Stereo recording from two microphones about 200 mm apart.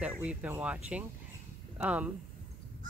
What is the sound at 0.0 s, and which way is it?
Speech, 5° right (ahead or behind).